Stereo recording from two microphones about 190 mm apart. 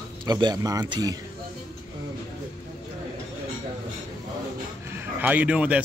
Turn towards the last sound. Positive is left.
turn(degrees=-5)  # may be behind; listen again after turning